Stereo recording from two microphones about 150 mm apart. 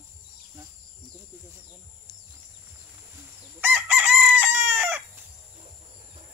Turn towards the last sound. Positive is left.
turn(degrees=-15)  # may be behind; listen again after turning